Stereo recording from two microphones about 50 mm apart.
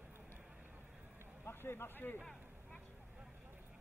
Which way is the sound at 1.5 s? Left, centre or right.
Left.